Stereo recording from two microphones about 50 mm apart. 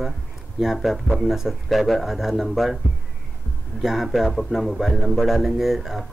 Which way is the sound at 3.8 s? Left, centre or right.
Centre.